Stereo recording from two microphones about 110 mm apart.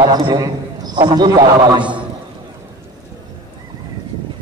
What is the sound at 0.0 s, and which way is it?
A man's voice, 40° right (ahead or behind).